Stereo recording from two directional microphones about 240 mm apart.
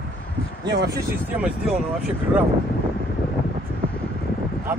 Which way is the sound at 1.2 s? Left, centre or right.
Centre.